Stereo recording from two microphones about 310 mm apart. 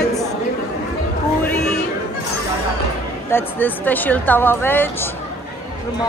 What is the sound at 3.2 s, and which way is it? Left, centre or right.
Speech, centre.